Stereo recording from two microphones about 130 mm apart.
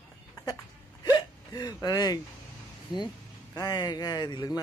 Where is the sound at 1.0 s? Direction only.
30° left (ahead or behind).